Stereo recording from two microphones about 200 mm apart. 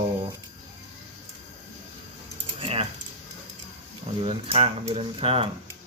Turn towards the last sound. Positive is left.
turn(degrees=-30)  # may be behind; listen again after turning